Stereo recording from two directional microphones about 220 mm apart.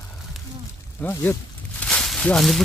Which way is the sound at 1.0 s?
10° left (ahead or behind).